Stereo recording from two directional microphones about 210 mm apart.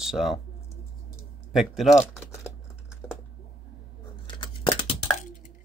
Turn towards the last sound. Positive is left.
turn(degrees=20)  # may be behind; listen again after turning